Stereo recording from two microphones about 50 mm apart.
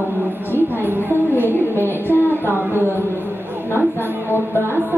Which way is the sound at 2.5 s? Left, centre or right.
Right.